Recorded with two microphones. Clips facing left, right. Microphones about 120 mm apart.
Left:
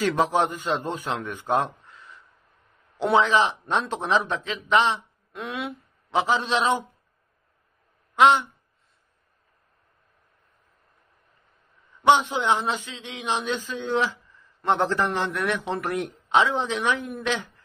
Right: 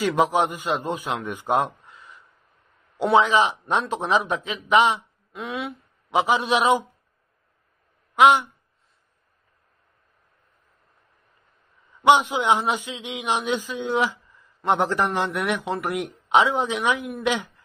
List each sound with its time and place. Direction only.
0.0 s a man's voice: 10° right (ahead or behind)
3.2 s a man's voice: 15° right (ahead or behind)
5.3 s speech: centre (ahead or behind)
6.0 s a man's voice: 15° right (ahead or behind)
12.1 s a man's voice: 15° right (ahead or behind)